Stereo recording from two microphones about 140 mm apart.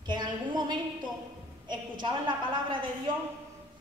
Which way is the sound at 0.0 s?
30° right (ahead or behind).